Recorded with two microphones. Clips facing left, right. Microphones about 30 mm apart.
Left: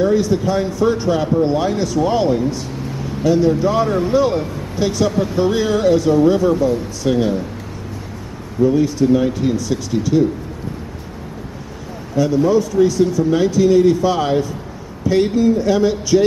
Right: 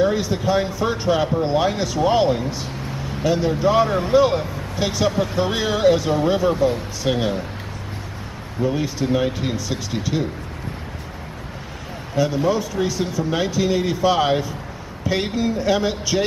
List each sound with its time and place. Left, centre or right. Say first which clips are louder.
0.0 s speech: left 4 dB; centre
8.6 s speech: left 7 dB; centre
12.2 s speech: left 5 dB; centre